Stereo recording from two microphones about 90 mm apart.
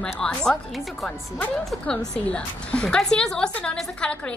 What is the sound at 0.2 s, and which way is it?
A woman's voice, 10° left (ahead or behind).